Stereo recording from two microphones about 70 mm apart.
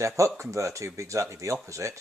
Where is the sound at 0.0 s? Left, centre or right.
Right.